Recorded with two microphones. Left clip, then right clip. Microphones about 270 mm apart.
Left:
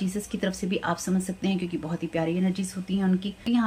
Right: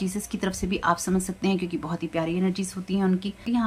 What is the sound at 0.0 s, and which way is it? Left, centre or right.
Speech, centre.